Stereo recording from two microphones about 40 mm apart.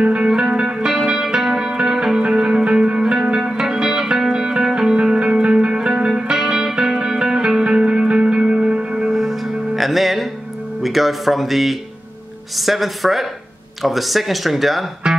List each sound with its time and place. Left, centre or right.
0.0 s music: right
9.1 s music: centre
10.8 s speech: centre